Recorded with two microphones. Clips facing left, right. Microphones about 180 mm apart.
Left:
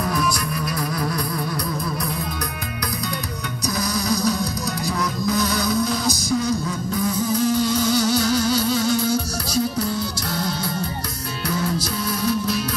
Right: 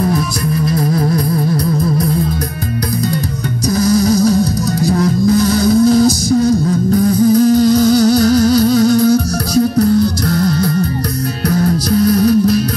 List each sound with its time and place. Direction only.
4.8 s music: 35° right (ahead or behind)